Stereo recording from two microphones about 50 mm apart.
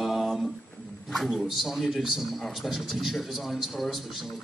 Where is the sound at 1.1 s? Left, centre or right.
Centre.